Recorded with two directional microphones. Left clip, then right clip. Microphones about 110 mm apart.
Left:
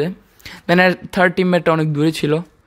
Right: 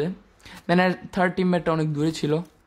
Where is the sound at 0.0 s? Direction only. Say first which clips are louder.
Left 6 dB; 20° left (ahead or behind).